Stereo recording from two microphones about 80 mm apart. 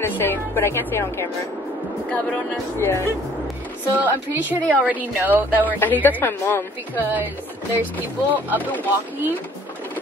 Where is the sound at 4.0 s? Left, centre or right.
Right.